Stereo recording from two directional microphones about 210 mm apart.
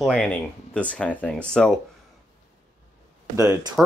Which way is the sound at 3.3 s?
15° right (ahead or behind).